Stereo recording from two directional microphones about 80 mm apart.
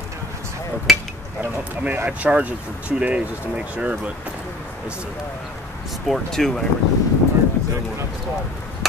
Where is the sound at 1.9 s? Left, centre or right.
Right.